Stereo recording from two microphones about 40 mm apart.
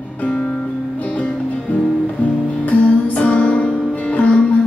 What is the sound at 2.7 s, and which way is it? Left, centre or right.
Music, left.